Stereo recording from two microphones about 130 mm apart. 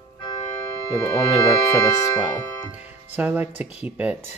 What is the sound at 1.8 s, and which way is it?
Speech, 25° left (ahead or behind).